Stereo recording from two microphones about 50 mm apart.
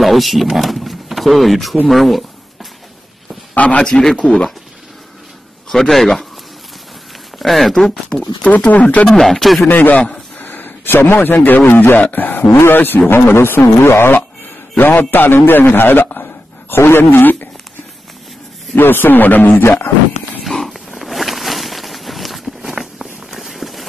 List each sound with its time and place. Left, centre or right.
0.0 s speech: centre
3.5 s a man's voice: left
3.8 s speech: centre
5.7 s speech: centre
7.3 s speech: centre
8.5 s speech: left
9.0 s speech: centre
9.7 s a man's voice: left
12.4 s speech: left
12.7 s a man's voice: left
18.8 s a man's voice: left
20.4 s a sound: centre
22.6 s walk: centre